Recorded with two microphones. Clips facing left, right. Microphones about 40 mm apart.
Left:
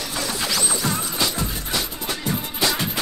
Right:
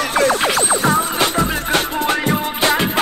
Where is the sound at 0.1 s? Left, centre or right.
Right.